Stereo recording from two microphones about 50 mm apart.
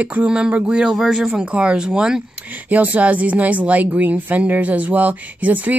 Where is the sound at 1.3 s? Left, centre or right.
Right.